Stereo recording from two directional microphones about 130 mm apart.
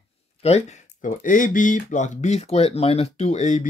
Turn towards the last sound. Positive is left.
turn(degrees=70)  # may be behind; listen again after turning